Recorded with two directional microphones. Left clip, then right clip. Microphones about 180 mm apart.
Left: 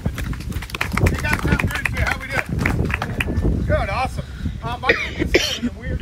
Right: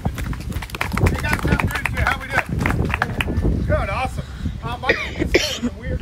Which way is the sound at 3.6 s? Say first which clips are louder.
Left 1 dB; 5° right (ahead or behind).